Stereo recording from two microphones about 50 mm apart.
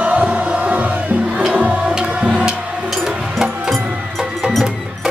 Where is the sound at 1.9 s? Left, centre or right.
Right.